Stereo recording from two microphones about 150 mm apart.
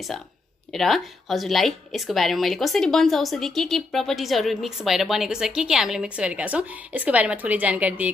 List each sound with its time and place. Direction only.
0.7 s speech: centre (ahead or behind)